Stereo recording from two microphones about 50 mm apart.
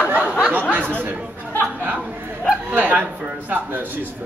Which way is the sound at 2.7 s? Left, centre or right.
Right.